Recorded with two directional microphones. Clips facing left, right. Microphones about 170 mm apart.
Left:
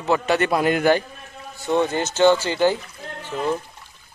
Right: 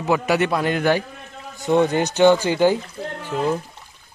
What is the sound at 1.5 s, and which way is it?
Speech, 15° right (ahead or behind).